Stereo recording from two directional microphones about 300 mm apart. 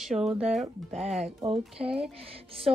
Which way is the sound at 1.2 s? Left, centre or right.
Centre.